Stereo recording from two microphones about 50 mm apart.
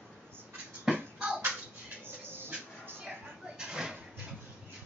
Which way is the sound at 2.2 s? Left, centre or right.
Right.